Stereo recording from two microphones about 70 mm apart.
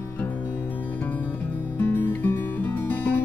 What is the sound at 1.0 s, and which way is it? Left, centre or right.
Music, left.